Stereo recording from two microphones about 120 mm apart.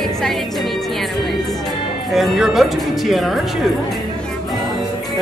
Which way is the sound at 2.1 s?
Centre (ahead or behind).